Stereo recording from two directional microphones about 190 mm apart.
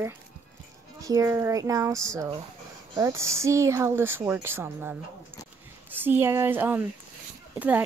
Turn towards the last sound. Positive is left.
turn(degrees=-10)  # may be behind; listen again after turning